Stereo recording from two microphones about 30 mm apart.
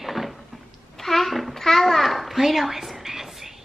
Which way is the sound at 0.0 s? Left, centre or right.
Centre.